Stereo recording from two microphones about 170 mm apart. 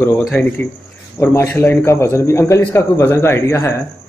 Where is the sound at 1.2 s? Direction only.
15° left (ahead or behind).